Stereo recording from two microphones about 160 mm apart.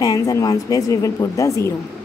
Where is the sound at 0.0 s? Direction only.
20° left (ahead or behind).